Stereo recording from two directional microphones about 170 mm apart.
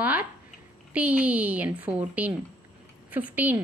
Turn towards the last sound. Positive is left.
turn(degrees=-10)  # may be behind; listen again after turning